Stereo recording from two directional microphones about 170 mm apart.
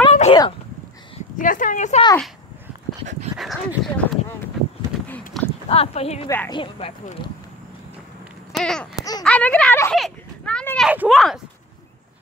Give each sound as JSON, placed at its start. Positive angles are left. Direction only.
{"t": 0.1, "sound": "a sound", "side_deg": 40}
{"t": 1.4, "sound": "speech", "side_deg": 50}
{"t": 3.3, "sound": "speech", "side_deg": 0}
{"t": 5.0, "sound": "clip-clop", "side_deg": 10}
{"t": 5.7, "sound": "speech", "side_deg": 35}
{"t": 6.2, "sound": "speech", "side_deg": 15}
{"t": 6.5, "sound": "speech", "side_deg": 30}
{"t": 8.5, "sound": "speech", "side_deg": 5}
{"t": 8.9, "sound": "speech", "side_deg": 20}
{"t": 9.2, "sound": "speech", "side_deg": 10}
{"t": 9.9, "sound": "a sound", "side_deg": 5}
{"t": 10.9, "sound": "speech", "side_deg": -5}